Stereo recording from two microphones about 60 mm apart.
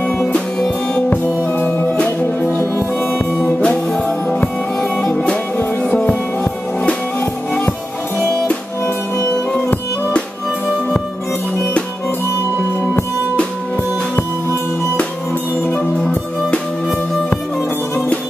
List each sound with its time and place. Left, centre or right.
0.2 s music: centre
1.2 s music: right
1.6 s music: left
3.5 s music: centre
7.2 s music: left